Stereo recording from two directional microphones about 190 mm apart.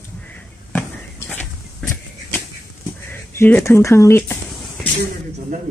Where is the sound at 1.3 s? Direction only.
10° left (ahead or behind).